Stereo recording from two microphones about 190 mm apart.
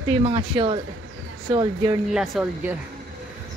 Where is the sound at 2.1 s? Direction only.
Centre (ahead or behind).